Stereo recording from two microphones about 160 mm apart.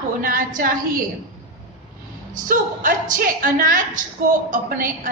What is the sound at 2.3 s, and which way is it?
A woman's voice, 55° right (ahead or behind).